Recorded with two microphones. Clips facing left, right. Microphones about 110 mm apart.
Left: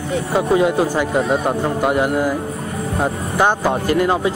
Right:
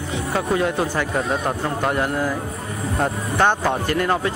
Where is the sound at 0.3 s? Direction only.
10° left (ahead or behind).